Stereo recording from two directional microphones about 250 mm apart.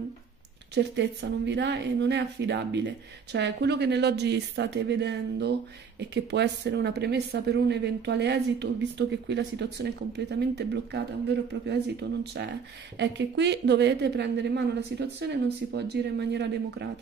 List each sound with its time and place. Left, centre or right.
0.7 s a woman's voice: right